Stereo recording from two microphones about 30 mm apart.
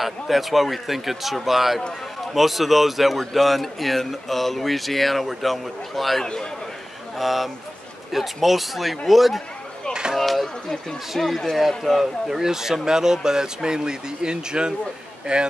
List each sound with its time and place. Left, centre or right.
0.0 s speech: centre; by 15.4 s right